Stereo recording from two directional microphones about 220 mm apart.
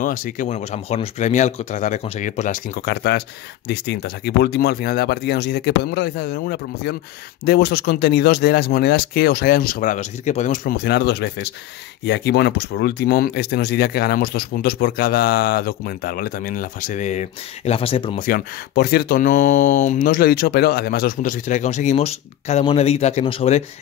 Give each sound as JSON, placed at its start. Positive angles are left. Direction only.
{"t": 0.0, "sound": "speech", "side_deg": 35}
{"t": 18.2, "sound": "speech", "side_deg": 45}